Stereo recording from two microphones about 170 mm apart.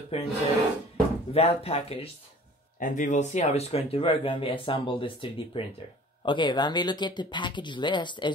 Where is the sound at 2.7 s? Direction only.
50° left (ahead or behind).